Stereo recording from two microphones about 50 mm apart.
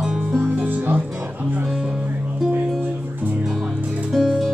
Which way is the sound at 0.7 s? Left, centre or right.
Right.